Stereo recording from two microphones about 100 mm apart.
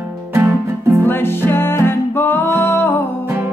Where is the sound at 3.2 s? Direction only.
25° right (ahead or behind).